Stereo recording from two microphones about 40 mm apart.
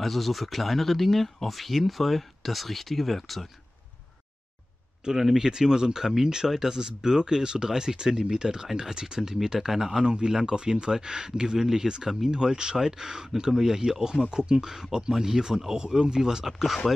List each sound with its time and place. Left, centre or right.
0.0 s speech: centre
5.0 s speech: centre
10.0 s speech: right